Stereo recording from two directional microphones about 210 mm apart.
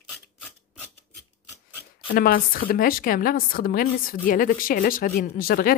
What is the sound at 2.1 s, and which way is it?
A woman's voice, 40° left (ahead or behind).